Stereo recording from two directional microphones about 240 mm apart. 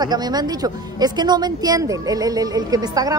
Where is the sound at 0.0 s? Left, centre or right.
Centre.